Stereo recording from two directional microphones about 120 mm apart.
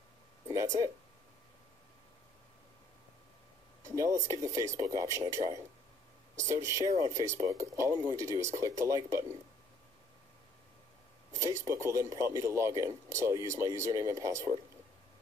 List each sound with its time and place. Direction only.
0.5 s speech: 30° right (ahead or behind)
3.8 s a sound: 25° right (ahead or behind)
4.3 s speech: 25° right (ahead or behind)
11.3 s speech: 25° right (ahead or behind)